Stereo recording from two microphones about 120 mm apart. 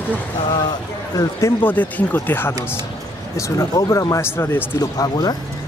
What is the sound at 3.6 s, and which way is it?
Speech, 25° left (ahead or behind).